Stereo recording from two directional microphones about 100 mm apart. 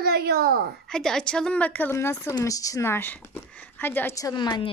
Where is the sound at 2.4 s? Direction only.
35° left (ahead or behind); by 4.1 s 20° left (ahead or behind).